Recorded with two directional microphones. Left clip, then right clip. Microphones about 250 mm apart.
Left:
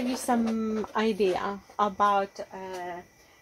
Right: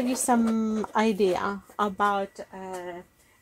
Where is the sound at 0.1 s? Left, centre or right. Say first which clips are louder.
Right 3 dB; right.